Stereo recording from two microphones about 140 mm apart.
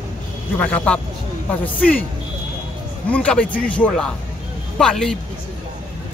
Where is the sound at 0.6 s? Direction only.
10° left (ahead or behind).